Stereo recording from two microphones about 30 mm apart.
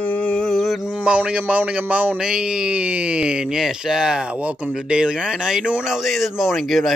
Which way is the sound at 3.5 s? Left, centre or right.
Centre.